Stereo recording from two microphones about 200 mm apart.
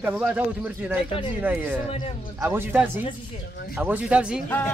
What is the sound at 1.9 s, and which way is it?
Speech, 30° left (ahead or behind).